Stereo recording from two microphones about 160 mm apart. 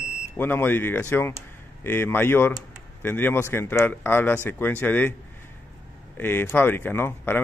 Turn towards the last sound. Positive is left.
turn(degrees=15)  # may be behind; listen again after turning